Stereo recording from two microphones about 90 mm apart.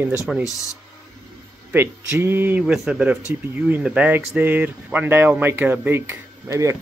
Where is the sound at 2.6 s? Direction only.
10° right (ahead or behind).